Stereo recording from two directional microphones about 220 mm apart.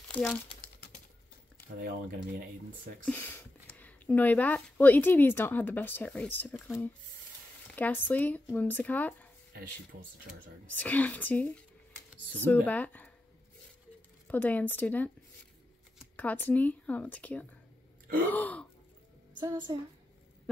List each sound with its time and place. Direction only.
0.1 s speech: 5° left (ahead or behind)
1.8 s speech: 45° right (ahead or behind)
3.1 s speech: 10° left (ahead or behind)
10.7 s speech: 5° left (ahead or behind)
12.6 s speech: 5° left (ahead or behind)
14.2 s speech: 5° left (ahead or behind)
16.2 s speech: 5° left (ahead or behind)
19.4 s a woman's voice: 20° right (ahead or behind)